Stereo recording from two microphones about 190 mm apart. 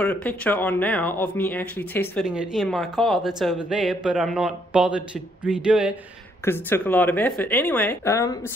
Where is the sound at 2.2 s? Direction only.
5° right (ahead or behind).